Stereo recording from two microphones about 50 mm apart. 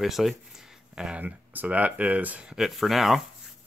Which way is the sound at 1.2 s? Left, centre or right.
Right.